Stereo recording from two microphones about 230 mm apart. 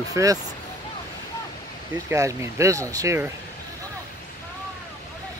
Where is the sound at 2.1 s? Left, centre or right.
Centre.